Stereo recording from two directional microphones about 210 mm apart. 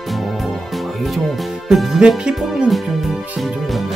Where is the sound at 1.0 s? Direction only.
Centre (ahead or behind).